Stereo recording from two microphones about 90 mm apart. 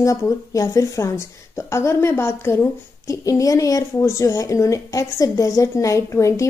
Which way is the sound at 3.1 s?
40° left (ahead or behind).